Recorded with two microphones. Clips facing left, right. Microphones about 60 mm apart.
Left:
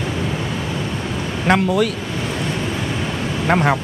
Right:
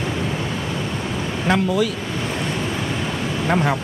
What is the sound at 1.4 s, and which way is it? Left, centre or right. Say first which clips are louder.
Speech: left 3 dB; left.